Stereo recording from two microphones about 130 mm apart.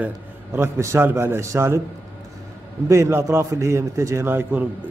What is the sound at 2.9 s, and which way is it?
A man's voice, 20° right (ahead or behind).